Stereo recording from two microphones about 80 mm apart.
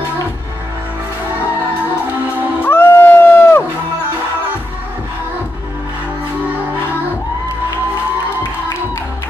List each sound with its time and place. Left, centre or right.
2.6 s music: left